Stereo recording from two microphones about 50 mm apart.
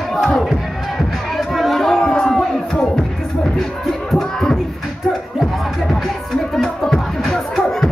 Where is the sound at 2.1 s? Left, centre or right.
Centre.